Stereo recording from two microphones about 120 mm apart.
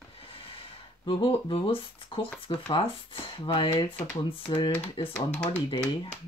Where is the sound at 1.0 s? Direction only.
50° left (ahead or behind).